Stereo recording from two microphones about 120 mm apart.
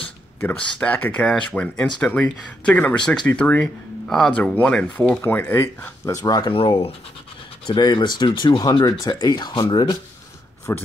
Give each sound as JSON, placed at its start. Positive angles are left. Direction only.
{"t": 0.4, "sound": "speech", "side_deg": 10}
{"t": 6.5, "sound": "speech", "side_deg": 50}
{"t": 7.6, "sound": "speech", "side_deg": 40}
{"t": 10.7, "sound": "speech", "side_deg": 20}